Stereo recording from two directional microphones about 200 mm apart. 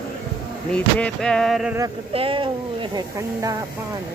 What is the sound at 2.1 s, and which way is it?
Speech, 25° right (ahead or behind).